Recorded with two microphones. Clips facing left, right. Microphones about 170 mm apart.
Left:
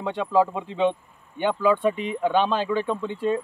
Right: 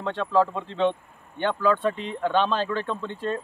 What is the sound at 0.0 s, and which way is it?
Speech, 10° left (ahead or behind).